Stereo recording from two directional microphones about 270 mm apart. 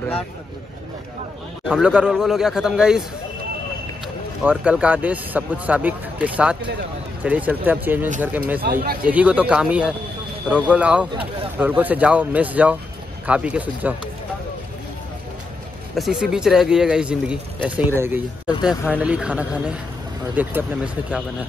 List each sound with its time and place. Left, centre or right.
1.7 s speech: centre
4.5 s speech: centre
8.6 s speech: right
9.0 s speech: centre
16.0 s speech: centre